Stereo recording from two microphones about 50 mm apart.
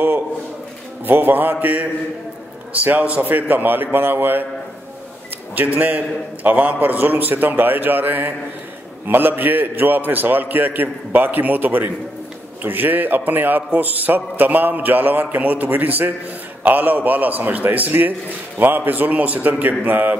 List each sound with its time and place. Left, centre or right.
1.0 s a man's voice: right
5.6 s a man's voice: right